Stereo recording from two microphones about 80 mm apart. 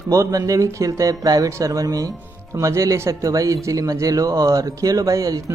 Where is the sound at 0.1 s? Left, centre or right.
Right.